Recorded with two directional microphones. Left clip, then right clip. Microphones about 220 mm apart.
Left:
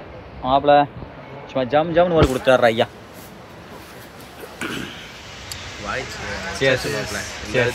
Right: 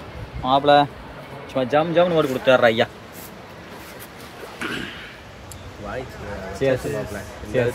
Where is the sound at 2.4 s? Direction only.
10° left (ahead or behind).